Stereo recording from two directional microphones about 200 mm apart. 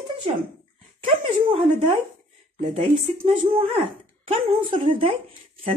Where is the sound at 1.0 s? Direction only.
30° right (ahead or behind).